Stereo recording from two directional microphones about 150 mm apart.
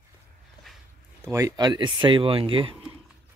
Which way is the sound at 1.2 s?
20° right (ahead or behind).